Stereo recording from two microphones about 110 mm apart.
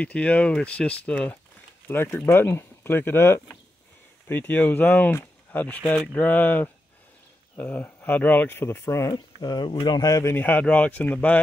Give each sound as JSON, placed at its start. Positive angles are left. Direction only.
{"t": 0.0, "sound": "speech", "side_deg": 10}
{"t": 10.3, "sound": "speech", "side_deg": 15}